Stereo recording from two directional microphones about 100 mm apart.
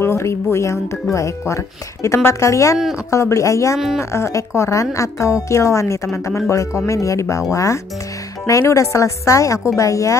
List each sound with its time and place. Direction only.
0.0 s a woman's voice: 25° left (ahead or behind)
3.7 s speech: 5° right (ahead or behind)
4.1 s a woman's voice: 30° left (ahead or behind)